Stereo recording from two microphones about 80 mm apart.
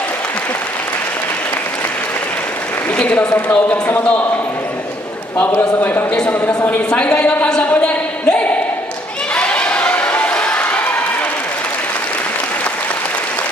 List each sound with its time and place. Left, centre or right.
3.0 s speech: centre
5.4 s speech: left
9.3 s crowd: centre